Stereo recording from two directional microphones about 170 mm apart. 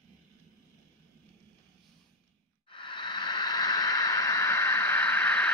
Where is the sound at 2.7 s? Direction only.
30° left (ahead or behind).